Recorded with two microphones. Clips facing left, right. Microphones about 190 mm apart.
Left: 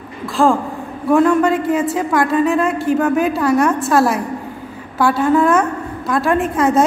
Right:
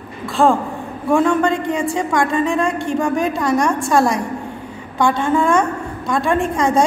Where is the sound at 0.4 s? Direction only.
Centre (ahead or behind).